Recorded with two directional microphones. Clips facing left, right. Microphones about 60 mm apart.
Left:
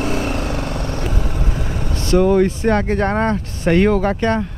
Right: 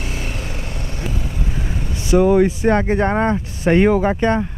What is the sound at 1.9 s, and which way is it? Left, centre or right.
Speech, centre.